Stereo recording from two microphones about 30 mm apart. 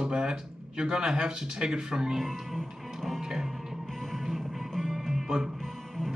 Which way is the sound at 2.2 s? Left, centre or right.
Centre.